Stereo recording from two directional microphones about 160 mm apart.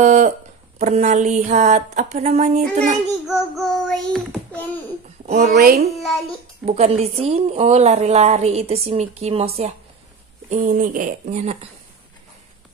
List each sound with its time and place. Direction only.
0.0 s speech: 50° right (ahead or behind)
0.7 s a sound: 45° right (ahead or behind)
3.3 s child singing: centre (ahead or behind)
5.2 s speech: 45° right (ahead or behind)
5.5 s a child's voice: 65° right (ahead or behind)
6.6 s a woman's voice: 40° right (ahead or behind)
10.5 s speech: 55° right (ahead or behind)